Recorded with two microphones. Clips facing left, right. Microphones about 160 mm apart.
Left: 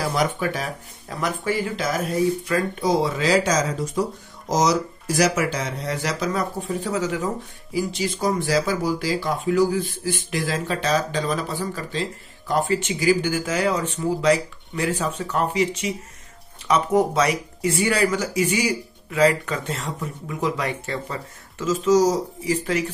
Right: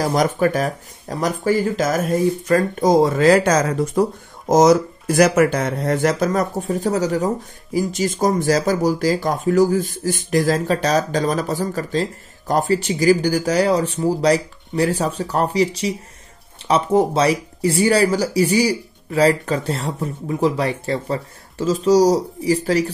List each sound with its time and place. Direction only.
0.0 s speech: 45° right (ahead or behind)